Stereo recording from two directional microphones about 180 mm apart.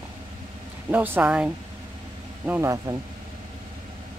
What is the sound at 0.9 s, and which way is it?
Speech, 10° right (ahead or behind).